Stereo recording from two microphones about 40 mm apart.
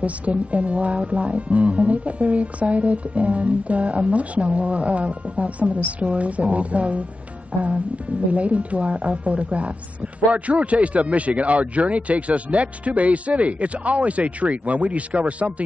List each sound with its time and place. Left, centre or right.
0.0 s speech: right
8.3 s speech: right